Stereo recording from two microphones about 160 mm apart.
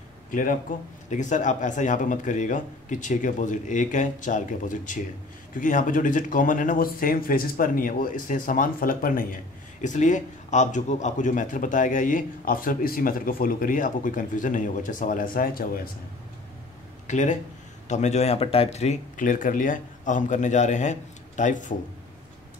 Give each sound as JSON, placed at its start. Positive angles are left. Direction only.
{"t": 0.3, "sound": "a man's voice", "side_deg": 55}
{"t": 9.8, "sound": "a man's voice", "side_deg": 50}
{"t": 17.1, "sound": "speech", "side_deg": 50}